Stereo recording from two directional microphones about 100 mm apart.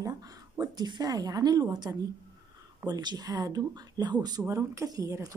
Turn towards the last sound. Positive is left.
turn(degrees=-35)  # may be behind; listen again after turning